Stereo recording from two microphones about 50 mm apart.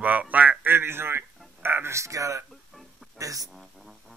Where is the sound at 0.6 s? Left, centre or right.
Right.